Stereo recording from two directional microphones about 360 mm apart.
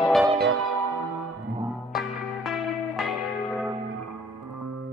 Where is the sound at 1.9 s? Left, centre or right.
Centre.